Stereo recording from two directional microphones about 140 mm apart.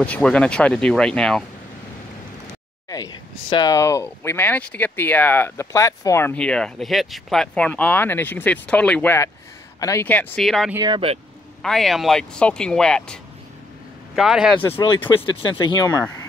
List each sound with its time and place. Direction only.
0.0 s speech: 10° left (ahead or behind)
2.9 s speech: 30° left (ahead or behind)
6.3 s speech: 5° left (ahead or behind); by 10.0 s 25° left (ahead or behind)
10.0 s speech: 10° left (ahead or behind)
10.8 s speech: 30° right (ahead or behind)
11.6 s speech: centre (ahead or behind)
14.6 s speech: 35° left (ahead or behind)